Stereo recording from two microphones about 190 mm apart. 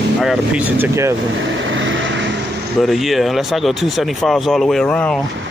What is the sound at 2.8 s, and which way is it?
Speech, centre (ahead or behind).